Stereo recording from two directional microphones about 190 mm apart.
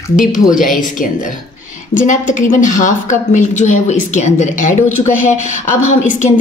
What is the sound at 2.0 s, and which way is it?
A woman's voice, 40° left (ahead or behind).